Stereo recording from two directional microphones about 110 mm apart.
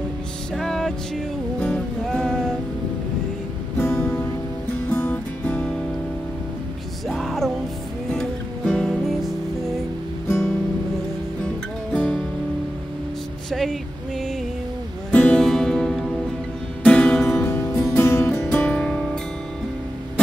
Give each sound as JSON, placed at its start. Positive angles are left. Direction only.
{"t": 0.6, "sound": "music", "side_deg": 5}
{"t": 3.7, "sound": "music", "side_deg": 25}
{"t": 5.0, "sound": "music", "side_deg": 10}
{"t": 7.1, "sound": "music", "side_deg": 0}
{"t": 11.9, "sound": "music", "side_deg": 10}
{"t": 13.5, "sound": "music", "side_deg": 0}
{"t": 15.0, "sound": "music", "side_deg": 10}
{"t": 17.3, "sound": "music", "side_deg": 25}
{"t": 18.4, "sound": "music", "side_deg": 10}